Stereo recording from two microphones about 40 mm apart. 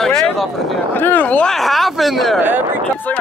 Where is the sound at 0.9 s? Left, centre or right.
Left.